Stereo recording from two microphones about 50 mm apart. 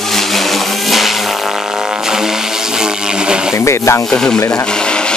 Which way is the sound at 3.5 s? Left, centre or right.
Left.